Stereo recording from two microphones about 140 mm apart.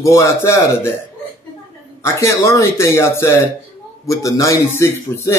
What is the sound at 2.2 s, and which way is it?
Speech, 20° left (ahead or behind).